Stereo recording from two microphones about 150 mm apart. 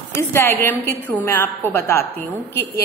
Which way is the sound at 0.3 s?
15° left (ahead or behind).